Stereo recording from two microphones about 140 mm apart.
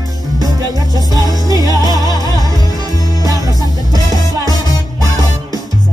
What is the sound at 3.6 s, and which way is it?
Music, 25° left (ahead or behind).